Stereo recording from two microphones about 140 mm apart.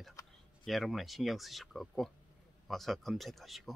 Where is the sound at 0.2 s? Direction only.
25° left (ahead or behind).